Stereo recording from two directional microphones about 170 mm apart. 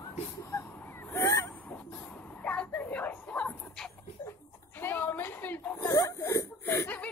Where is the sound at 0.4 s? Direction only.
15° left (ahead or behind).